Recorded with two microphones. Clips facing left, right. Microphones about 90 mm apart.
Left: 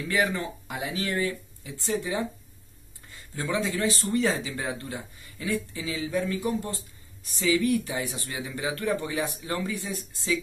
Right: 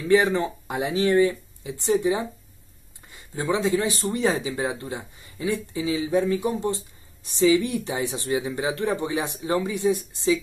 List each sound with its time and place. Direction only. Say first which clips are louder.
0.1 s speech: right 8 dB; 25° right (ahead or behind)